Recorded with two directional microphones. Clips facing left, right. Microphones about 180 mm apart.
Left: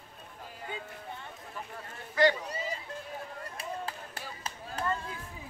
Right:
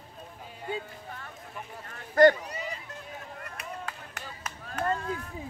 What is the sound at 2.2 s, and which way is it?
Speech, 50° right (ahead or behind).